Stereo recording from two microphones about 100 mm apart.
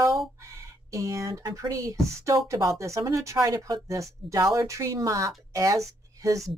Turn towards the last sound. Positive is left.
turn(degrees=-35)  # may be behind; listen again after turning